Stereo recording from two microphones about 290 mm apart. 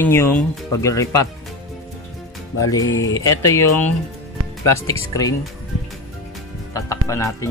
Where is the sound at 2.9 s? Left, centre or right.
Left.